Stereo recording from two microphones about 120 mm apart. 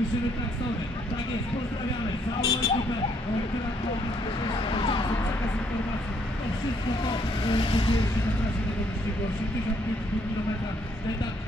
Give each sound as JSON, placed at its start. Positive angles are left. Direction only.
{"t": 2.4, "sound": "speech", "side_deg": 35}
{"t": 4.5, "sound": "a sound", "side_deg": 50}
{"t": 7.1, "sound": "speech", "side_deg": 45}